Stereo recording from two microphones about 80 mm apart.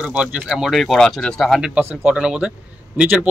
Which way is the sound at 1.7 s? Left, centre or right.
Centre.